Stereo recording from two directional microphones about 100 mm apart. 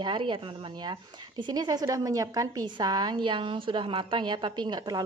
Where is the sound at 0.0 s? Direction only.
55° right (ahead or behind).